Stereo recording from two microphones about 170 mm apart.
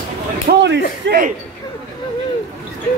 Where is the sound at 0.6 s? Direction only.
90° right.